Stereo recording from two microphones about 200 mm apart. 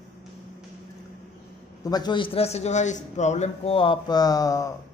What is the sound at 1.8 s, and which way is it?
Speech, 20° left (ahead or behind).